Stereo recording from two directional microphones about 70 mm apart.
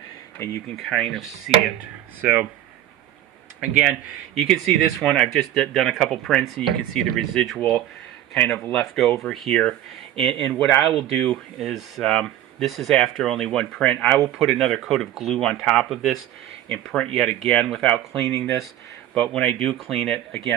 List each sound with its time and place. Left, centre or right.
0.4 s speech: left
0.7 s speech: centre
3.6 s speech: centre
5.0 s speech: centre
8.7 s speech: centre
16.8 s speech: centre
17.1 s speech: centre